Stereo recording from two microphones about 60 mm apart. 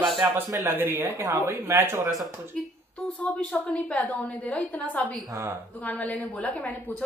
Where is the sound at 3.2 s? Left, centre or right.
Left.